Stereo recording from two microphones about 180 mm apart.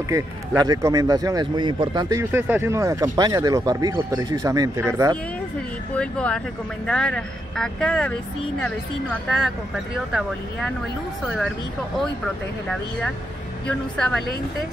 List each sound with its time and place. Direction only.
0.1 s speech: 20° right (ahead or behind)
5.9 s speech: 5° left (ahead or behind)
11.2 s speech: centre (ahead or behind)
13.7 s speech: 5° left (ahead or behind)